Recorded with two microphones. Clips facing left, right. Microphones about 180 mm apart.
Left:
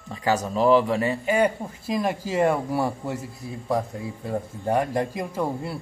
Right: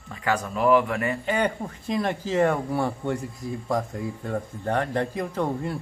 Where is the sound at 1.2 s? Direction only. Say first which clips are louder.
Left 5 dB; 5° left (ahead or behind).